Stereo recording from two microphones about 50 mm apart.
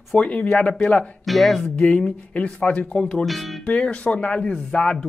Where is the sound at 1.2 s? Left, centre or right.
Centre.